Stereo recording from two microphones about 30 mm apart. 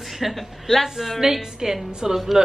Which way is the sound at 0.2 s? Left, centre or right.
Centre.